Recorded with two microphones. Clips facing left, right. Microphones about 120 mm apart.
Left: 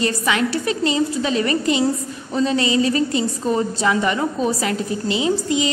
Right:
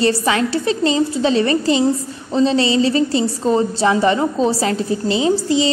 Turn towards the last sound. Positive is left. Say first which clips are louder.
# right 4 dB
turn(degrees=-30)  # may be behind; listen again after turning